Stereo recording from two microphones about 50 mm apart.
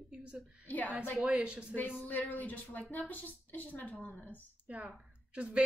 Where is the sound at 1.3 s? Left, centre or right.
Centre.